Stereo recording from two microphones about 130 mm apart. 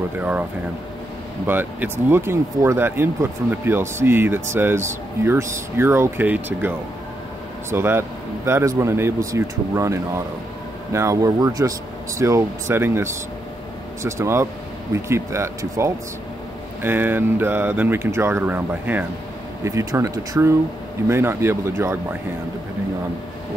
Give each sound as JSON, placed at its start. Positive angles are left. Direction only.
{"t": 0.2, "sound": "speech", "side_deg": -10}
{"t": 7.7, "sound": "speech", "side_deg": -20}
{"t": 19.6, "sound": "speech", "side_deg": -25}